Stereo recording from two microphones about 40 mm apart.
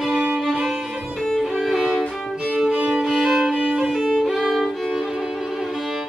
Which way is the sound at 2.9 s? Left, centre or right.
Centre.